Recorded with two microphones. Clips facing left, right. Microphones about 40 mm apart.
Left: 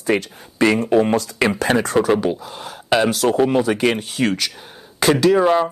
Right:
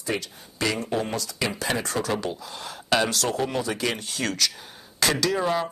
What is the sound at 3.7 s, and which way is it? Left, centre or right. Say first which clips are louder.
Speech: left 9 dB; left.